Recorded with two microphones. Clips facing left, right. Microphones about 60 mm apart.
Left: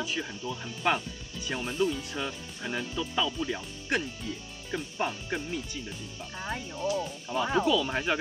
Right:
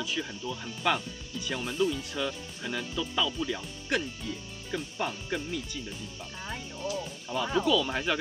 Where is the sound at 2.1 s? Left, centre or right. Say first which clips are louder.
Right 2 dB; left.